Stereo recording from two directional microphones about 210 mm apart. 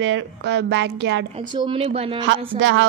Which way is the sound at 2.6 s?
65° right (ahead or behind).